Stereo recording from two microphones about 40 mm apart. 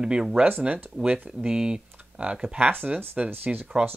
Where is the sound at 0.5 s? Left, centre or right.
Right.